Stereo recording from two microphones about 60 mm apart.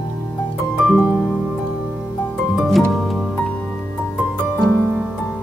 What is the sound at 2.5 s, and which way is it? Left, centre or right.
Music, centre.